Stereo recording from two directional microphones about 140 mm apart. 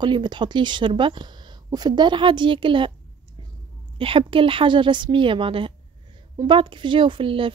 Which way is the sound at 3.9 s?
40° right (ahead or behind).